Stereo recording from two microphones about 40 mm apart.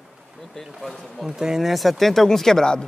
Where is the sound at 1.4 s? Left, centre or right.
Centre.